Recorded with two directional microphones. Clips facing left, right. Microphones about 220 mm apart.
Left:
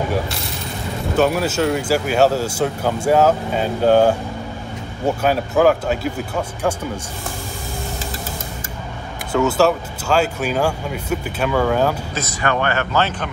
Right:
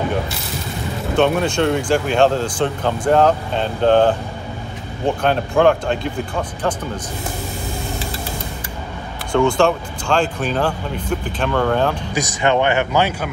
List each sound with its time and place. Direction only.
1.1 s speech: 5° left (ahead or behind)
9.3 s speech: 5° left (ahead or behind)
12.1 s speech: 15° right (ahead or behind)